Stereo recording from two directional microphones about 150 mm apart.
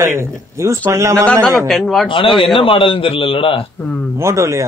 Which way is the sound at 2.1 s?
35° left (ahead or behind).